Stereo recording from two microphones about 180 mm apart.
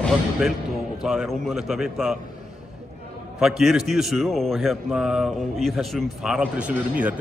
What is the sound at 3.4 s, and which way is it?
A man's voice, centre (ahead or behind).